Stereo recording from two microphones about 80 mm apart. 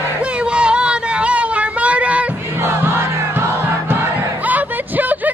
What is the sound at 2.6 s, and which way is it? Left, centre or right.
Crowd, right.